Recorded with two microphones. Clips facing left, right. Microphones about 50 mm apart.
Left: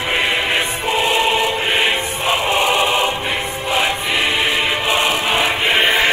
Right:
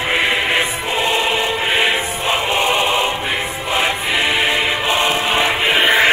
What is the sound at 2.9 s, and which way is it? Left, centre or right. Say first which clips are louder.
Choir: even; right.